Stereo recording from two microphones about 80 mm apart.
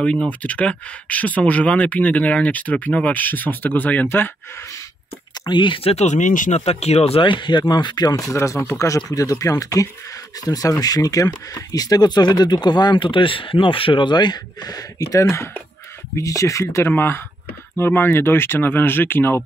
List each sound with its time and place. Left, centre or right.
0.0 s speech: centre
5.5 s speech: left
7.2 s speech: left
7.7 s speech: left
8.3 s speech: left